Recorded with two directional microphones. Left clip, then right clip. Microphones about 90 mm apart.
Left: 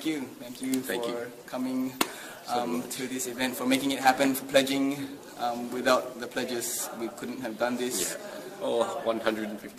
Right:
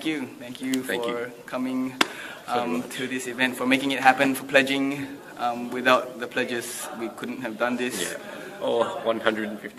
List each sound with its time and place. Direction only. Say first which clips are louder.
0.8 s a man's voice: right 6 dB; 15° left (ahead or behind)
1.5 s a man's voice: right 3 dB; 30° left (ahead or behind)
8.6 s a man's voice: right 4 dB; 15° left (ahead or behind)